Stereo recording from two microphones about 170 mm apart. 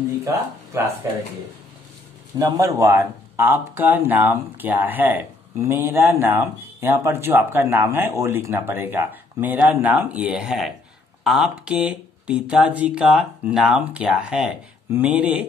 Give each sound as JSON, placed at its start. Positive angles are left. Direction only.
{"t": 0.2, "sound": "speech", "side_deg": -15}
{"t": 2.3, "sound": "speech", "side_deg": -20}